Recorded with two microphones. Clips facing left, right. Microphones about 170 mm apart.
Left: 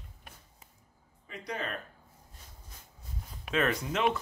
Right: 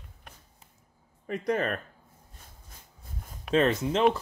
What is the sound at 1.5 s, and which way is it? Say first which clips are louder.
Speech: right 9 dB; 50° right (ahead or behind).